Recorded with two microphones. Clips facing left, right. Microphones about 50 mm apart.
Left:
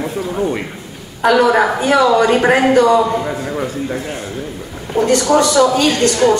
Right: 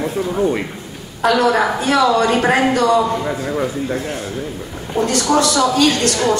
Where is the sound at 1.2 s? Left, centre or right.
Centre.